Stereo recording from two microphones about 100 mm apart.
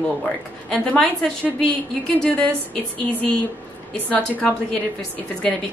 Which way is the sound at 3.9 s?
10° left (ahead or behind).